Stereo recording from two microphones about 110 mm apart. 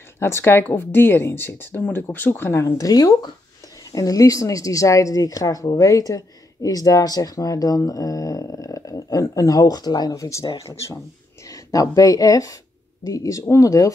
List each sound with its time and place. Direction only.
0.2 s speech: 20° left (ahead or behind)